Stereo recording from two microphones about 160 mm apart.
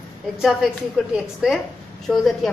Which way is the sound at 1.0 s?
5° right (ahead or behind).